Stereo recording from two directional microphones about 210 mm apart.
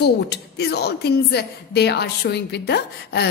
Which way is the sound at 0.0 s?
50° left (ahead or behind).